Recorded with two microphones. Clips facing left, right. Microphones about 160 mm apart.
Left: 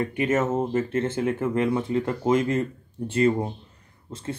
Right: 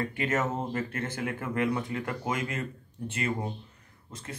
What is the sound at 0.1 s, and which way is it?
Speech, 20° left (ahead or behind).